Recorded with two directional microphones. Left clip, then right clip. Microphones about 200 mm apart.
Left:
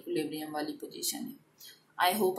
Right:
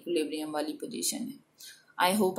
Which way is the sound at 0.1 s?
35° right (ahead or behind).